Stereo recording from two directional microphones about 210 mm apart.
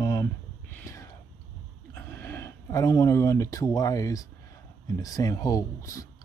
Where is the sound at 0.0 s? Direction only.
15° left (ahead or behind).